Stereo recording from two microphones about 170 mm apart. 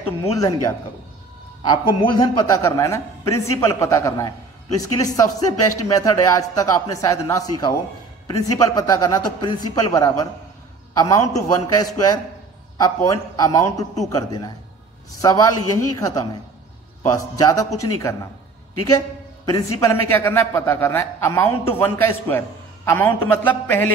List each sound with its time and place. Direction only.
0.2 s a man's voice: 20° left (ahead or behind)